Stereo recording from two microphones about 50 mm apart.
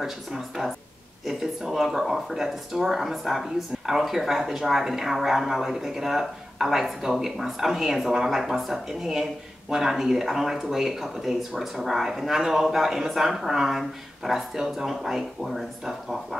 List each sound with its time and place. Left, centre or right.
0.0 s speech: centre